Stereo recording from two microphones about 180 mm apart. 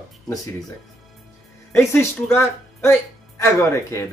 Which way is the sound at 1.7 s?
15° left (ahead or behind).